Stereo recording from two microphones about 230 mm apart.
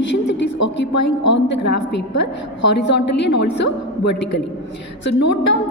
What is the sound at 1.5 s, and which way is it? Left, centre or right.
A woman's voice, left.